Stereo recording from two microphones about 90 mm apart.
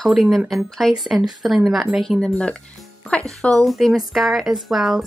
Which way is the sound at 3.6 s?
Centre (ahead or behind).